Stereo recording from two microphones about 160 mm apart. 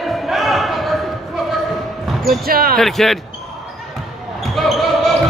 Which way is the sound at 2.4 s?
65° right (ahead or behind).